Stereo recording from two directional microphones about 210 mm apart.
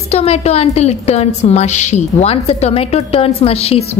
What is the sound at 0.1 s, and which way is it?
A woman's voice, 30° left (ahead or behind).